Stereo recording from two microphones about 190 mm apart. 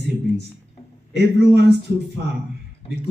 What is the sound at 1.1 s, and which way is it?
Speech, 60° right (ahead or behind).